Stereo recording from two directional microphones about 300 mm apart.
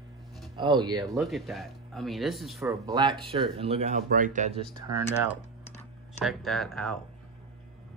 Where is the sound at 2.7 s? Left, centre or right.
Centre.